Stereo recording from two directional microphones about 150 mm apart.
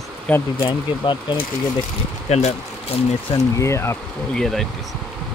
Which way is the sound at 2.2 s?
45° left (ahead or behind).